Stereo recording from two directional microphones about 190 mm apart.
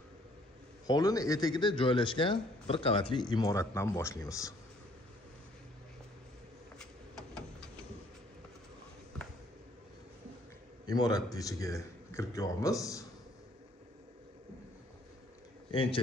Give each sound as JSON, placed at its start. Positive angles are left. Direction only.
{"t": 0.8, "sound": "speech", "side_deg": 20}
{"t": 6.8, "sound": "vehicle", "side_deg": 5}
{"t": 10.9, "sound": "a man's voice", "side_deg": 20}
{"t": 15.7, "sound": "a man's voice", "side_deg": 30}